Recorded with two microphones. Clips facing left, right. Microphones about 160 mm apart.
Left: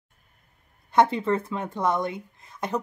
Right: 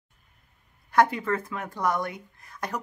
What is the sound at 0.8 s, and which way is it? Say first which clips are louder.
Speech: left 2 dB; 25° left (ahead or behind).